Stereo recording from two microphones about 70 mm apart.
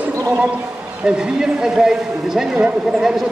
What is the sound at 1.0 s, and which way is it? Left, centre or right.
Speech, centre.